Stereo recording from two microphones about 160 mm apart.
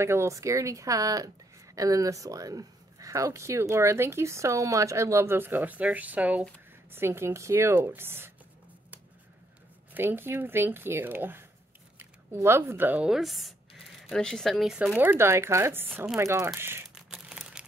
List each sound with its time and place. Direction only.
0.0 s speech: 15° right (ahead or behind)
9.9 s speech: 15° right (ahead or behind)
16.9 s a sound: 5° right (ahead or behind)